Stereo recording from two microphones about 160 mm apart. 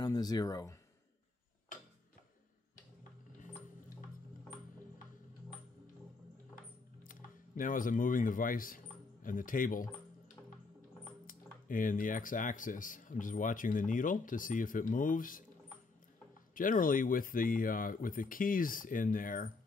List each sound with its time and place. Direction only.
0.0 s speech: 25° left (ahead or behind)
3.0 s music: 50° left (ahead or behind)
7.1 s speech: 55° left (ahead or behind)
16.5 s speech: 60° left (ahead or behind)